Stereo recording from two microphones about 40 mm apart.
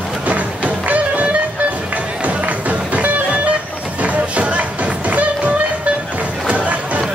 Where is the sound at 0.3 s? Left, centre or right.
Right.